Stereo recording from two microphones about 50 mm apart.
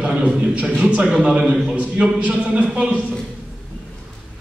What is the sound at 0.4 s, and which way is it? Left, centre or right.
A man's voice, right.